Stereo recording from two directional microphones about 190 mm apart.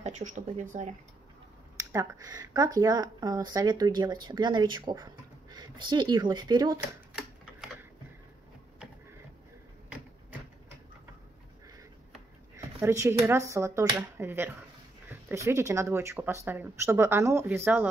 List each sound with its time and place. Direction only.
0.0 s speech: 40° right (ahead or behind)
1.8 s speech: 15° right (ahead or behind)
12.5 s speech: 15° right (ahead or behind)